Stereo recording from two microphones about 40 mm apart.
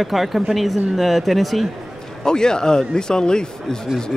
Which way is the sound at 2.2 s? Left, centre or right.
Centre.